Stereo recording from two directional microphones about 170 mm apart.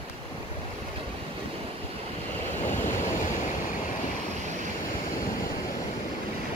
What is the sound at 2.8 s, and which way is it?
Vehicle, 45° left (ahead or behind).